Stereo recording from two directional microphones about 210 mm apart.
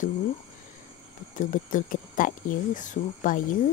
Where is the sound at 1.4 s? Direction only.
40° left (ahead or behind).